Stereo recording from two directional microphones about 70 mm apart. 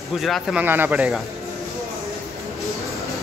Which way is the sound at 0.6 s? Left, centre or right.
Right.